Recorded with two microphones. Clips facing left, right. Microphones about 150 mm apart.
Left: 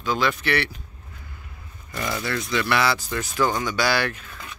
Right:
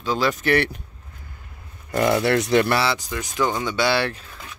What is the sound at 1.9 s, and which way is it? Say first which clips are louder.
Speech: right 9 dB; 60° right (ahead or behind).